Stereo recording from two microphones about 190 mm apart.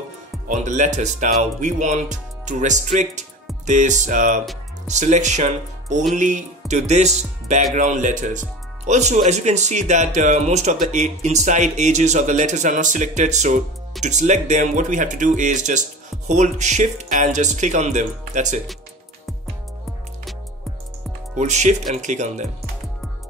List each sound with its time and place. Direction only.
0.5 s speech: 40° right (ahead or behind)
21.4 s speech: 35° right (ahead or behind)